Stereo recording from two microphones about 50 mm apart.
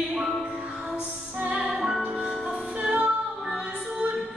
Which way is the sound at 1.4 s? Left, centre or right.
Right.